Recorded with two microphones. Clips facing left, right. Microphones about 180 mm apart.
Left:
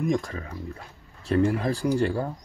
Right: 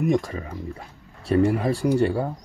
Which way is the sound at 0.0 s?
10° right (ahead or behind).